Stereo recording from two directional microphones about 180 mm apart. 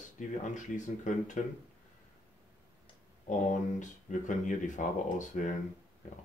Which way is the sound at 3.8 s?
45° left (ahead or behind).